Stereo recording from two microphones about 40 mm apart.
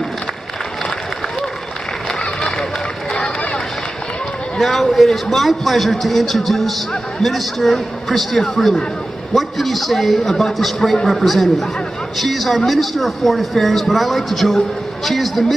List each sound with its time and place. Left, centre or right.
3.1 s run: centre
4.6 s speech: centre